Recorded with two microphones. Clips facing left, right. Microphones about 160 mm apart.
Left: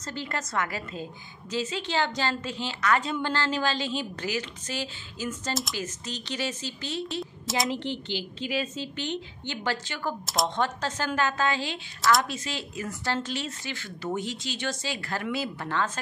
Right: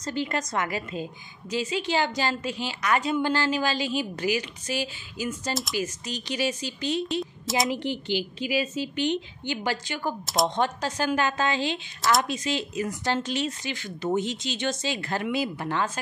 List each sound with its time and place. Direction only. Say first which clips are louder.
0.0 s a woman's voice: right 5 dB; 15° right (ahead or behind)
5.5 s speech: right 1 dB; centre (ahead or behind)
5.8 s a woman's voice: right 4 dB; 10° right (ahead or behind)
7.4 s speech: right 2 dB; centre (ahead or behind)
7.7 s a woman's voice: right 4 dB; 10° right (ahead or behind)
10.2 s speech: right 4 dB; centre (ahead or behind)
10.5 s a woman's voice: right 2 dB; 15° right (ahead or behind)